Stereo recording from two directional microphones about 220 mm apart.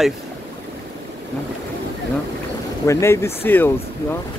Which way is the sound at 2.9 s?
10° left (ahead or behind).